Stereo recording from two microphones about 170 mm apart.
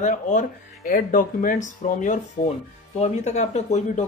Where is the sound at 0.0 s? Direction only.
45° left (ahead or behind).